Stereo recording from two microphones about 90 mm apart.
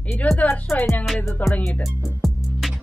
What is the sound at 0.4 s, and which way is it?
Speech, 15° left (ahead or behind).